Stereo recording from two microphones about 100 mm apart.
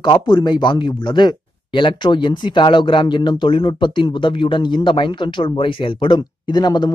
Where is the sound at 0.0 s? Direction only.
50° left (ahead or behind).